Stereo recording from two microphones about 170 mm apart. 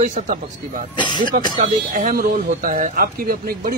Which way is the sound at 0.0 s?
50° right (ahead or behind).